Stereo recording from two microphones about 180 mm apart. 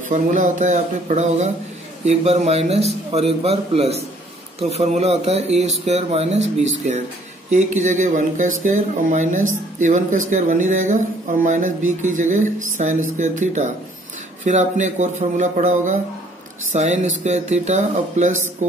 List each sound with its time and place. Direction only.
0.1 s a man's voice: 45° right (ahead or behind)
7.5 s a man's voice: 40° right (ahead or behind)